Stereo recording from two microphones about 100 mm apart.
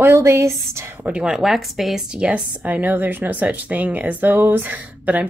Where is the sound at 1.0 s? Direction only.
10° right (ahead or behind).